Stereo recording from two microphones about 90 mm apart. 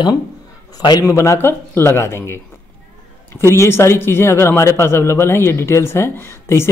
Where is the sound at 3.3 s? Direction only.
30° left (ahead or behind).